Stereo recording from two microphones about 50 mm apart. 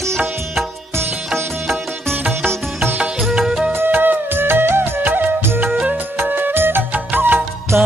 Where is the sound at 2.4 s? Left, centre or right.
Right.